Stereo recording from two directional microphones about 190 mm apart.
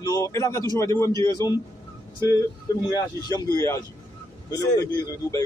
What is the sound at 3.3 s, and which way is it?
A man's voice, 20° left (ahead or behind).